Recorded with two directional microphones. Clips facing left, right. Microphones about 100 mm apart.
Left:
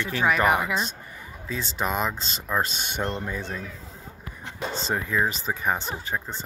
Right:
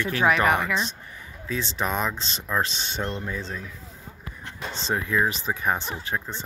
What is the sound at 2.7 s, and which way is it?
Speech, 55° left (ahead or behind).